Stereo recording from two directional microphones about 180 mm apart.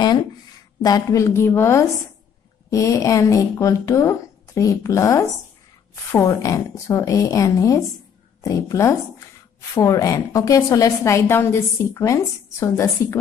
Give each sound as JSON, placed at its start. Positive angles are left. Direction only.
{"t": 0.8, "sound": "a woman's voice", "side_deg": 20}